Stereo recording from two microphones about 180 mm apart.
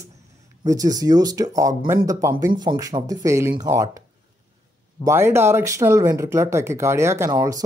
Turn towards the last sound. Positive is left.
turn(degrees=-20)  # may be behind; listen again after turning